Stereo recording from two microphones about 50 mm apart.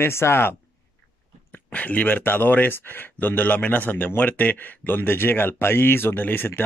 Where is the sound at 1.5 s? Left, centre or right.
Left.